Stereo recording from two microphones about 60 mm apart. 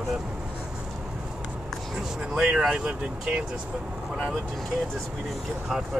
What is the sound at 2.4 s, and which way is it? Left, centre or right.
Speech, centre.